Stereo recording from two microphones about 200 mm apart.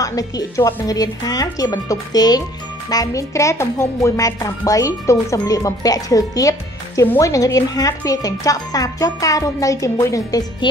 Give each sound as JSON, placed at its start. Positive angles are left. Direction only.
{"t": 0.0, "sound": "speech", "side_deg": 20}